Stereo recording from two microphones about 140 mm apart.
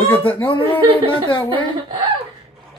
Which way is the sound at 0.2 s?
40° left (ahead or behind).